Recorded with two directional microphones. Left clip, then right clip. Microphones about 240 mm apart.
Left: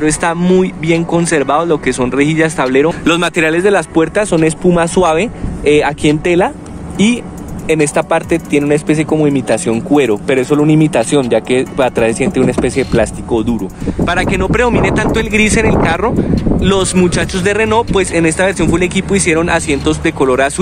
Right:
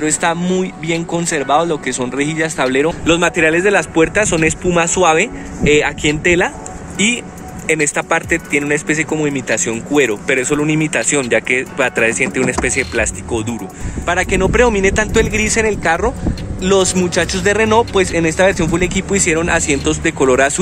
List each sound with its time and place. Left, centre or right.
0.0 s speech: centre
7.7 s speech: centre
16.3 s speech: centre